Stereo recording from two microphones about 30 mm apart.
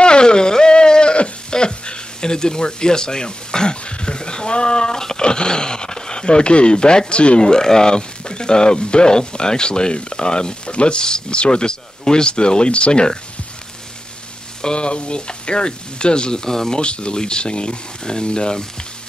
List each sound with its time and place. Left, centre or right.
0.0 s a sound: left
5.2 s speech: left
7.4 s speech: left
14.6 s speech: left
16.4 s speech: centre
16.8 s speech: left